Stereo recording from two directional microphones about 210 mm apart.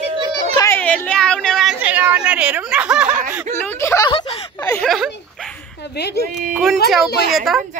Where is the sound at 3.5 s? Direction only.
10° left (ahead or behind).